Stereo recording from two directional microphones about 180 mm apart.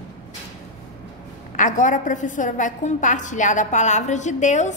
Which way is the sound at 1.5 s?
45° left (ahead or behind).